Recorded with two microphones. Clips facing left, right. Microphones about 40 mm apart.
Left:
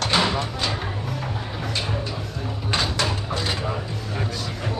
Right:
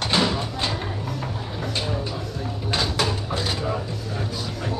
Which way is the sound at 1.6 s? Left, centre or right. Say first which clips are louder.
Right 1 dB; centre.